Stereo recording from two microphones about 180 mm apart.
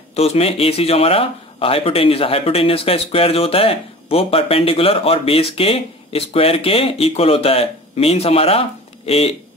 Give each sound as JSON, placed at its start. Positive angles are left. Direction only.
{"t": 0.1, "sound": "speech", "side_deg": 35}